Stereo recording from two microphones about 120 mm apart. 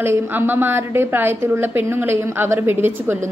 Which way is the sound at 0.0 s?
20° right (ahead or behind).